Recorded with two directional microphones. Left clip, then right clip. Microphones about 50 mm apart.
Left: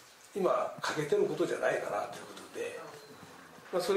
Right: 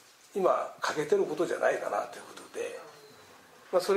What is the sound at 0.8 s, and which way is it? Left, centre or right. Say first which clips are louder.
Speech: right 3 dB; right.